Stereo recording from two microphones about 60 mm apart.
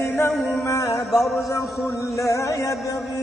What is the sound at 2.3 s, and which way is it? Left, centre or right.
Music, left.